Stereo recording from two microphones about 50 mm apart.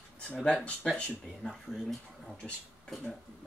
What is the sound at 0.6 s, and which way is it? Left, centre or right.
Speech, left.